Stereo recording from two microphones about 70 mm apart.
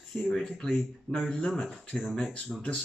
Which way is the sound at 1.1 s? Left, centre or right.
Centre.